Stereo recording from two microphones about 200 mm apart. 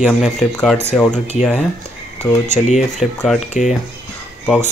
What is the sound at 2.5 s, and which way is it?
Speech, 35° left (ahead or behind).